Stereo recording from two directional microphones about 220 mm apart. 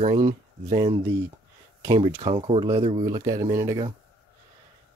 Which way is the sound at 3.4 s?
15° right (ahead or behind).